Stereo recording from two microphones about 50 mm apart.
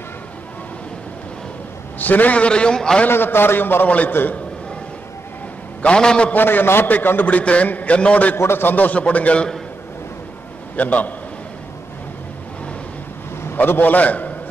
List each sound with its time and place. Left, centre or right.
2.0 s a man's voice: left; by 3.0 s centre
3.1 s a man's voice: left
5.8 s a man's voice: centre
6.3 s a man's voice: left
8.4 s a man's voice: left
8.7 s a man's voice: left
10.8 s a man's voice: left
13.6 s a man's voice: left